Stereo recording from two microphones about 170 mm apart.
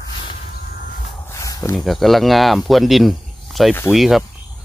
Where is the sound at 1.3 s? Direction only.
20° left (ahead or behind).